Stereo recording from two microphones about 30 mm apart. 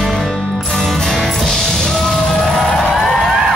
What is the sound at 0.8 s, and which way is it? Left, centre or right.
Music, centre.